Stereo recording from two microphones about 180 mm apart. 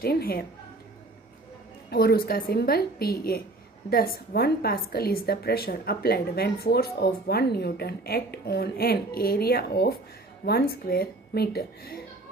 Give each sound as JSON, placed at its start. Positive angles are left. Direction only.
{"t": 0.0, "sound": "a woman's voice", "side_deg": 60}
{"t": 1.9, "sound": "a woman's voice", "side_deg": 60}